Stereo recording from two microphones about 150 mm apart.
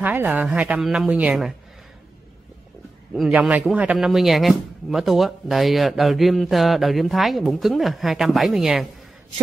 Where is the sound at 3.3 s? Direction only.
10° right (ahead or behind).